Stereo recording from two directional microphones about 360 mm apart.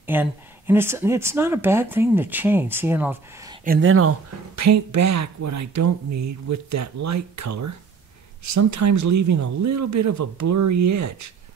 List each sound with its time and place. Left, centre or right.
0.0 s speech: centre
3.6 s speech: right